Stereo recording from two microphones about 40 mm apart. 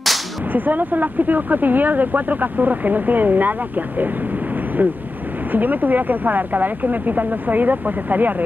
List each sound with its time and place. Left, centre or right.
0.5 s speech: right
5.5 s speech: right